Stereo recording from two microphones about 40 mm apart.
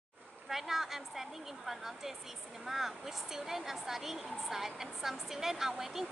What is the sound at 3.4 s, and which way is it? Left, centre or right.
A woman's voice, centre.